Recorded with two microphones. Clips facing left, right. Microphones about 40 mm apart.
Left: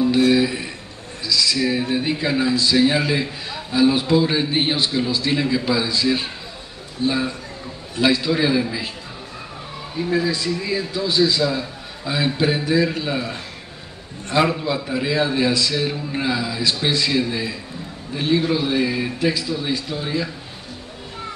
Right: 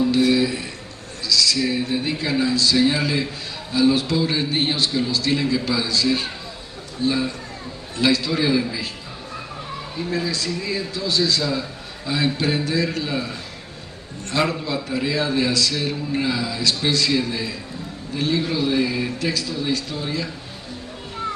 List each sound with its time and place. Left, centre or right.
0.3 s a man's voice: centre
9.9 s a man's voice: centre
14.3 s a man's voice: centre